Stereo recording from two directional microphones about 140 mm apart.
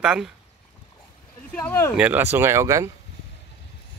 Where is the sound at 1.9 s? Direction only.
10° right (ahead or behind).